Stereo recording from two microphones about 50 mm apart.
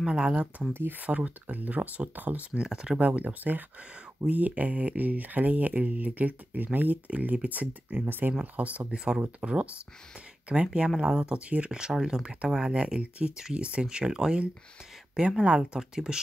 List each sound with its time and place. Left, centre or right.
0.0 s speech: centre
0.7 s speech: right
1.0 s speech: right
2.5 s speech: centre
3.0 s speech: right
3.9 s speech: right
8.5 s speech: right
8.9 s speech: centre